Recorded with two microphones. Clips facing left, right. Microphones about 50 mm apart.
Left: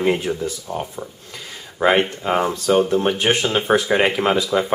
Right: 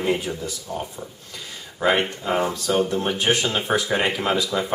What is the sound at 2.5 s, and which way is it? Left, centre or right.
Speech, centre.